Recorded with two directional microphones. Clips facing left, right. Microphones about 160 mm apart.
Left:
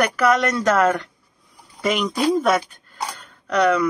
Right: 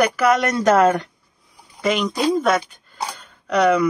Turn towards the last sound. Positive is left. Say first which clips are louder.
# right 2 dB
turn(degrees=-10)  # may be behind; listen again after turning